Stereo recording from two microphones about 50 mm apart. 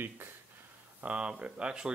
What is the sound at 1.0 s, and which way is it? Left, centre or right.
Speech, right.